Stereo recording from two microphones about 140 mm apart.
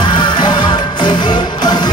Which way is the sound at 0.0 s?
35° left (ahead or behind).